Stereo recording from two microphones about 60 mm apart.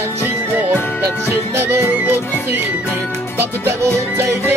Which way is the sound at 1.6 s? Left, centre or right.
Right.